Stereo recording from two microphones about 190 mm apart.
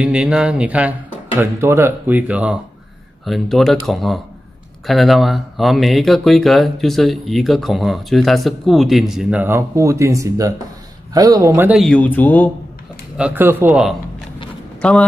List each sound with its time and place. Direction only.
0.0 s speech: 5° right (ahead or behind)
11.8 s speech: 5° left (ahead or behind)
13.2 s speech: 10° right (ahead or behind); by 15.0 s 5° left (ahead or behind)